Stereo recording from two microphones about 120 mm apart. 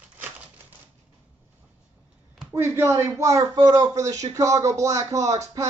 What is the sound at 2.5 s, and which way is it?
Speech, 20° right (ahead or behind).